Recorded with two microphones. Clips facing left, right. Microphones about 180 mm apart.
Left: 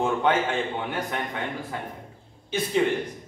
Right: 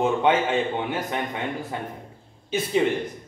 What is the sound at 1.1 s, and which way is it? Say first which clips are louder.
Speech: right 2 dB; 15° right (ahead or behind).